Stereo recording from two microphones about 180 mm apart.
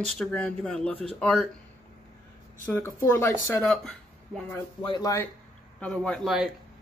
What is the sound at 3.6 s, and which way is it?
Speech, 5° left (ahead or behind).